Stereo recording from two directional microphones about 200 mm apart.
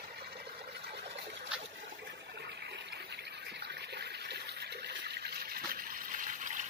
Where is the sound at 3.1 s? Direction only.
55° right (ahead or behind).